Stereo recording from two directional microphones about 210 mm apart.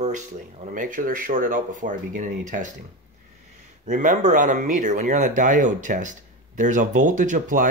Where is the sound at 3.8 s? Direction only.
40° right (ahead or behind).